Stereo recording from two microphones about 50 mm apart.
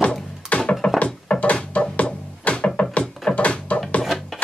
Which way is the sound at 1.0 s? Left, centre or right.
Left.